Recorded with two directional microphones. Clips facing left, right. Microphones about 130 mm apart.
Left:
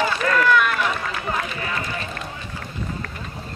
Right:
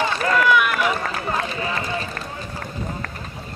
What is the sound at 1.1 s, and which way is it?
Run, 35° right (ahead or behind).